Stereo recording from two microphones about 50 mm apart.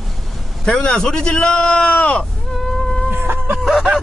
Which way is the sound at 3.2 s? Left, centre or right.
Right.